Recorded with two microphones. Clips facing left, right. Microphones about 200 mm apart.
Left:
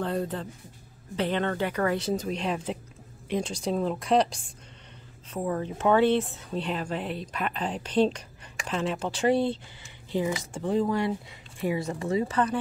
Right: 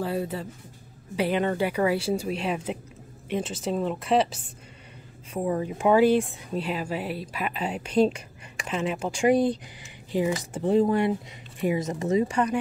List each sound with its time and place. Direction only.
0.0 s speech: 5° right (ahead or behind)